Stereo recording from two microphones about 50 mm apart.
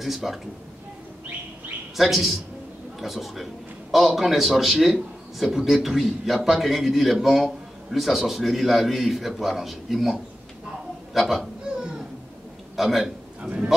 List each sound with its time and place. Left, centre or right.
0.0 s a man's voice: centre
2.0 s a man's voice: centre
12.7 s a man's voice: centre
13.4 s a man's voice: right